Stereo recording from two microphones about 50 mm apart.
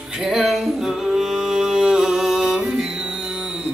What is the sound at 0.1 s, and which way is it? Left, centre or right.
Music, centre.